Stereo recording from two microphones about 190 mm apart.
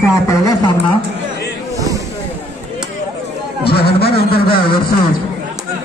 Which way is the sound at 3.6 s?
55° left (ahead or behind).